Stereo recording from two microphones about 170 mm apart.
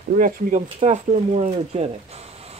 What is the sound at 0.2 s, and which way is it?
Speech, 50° right (ahead or behind).